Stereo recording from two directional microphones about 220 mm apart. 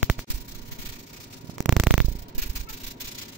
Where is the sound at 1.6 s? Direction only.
Centre (ahead or behind).